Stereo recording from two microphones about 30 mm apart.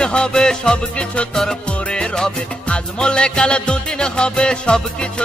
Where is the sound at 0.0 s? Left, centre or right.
Left.